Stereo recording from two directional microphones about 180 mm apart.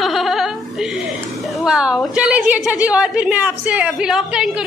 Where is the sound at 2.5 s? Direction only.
5° right (ahead or behind).